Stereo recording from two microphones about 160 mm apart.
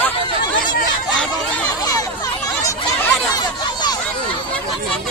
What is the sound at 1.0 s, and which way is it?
Chatter, 5° left (ahead or behind).